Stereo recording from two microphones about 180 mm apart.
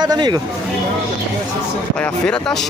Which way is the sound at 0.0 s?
20° right (ahead or behind).